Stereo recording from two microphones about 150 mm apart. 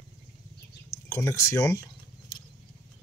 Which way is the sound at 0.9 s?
20° left (ahead or behind).